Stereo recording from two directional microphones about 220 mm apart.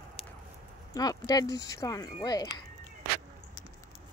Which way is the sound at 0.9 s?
15° left (ahead or behind).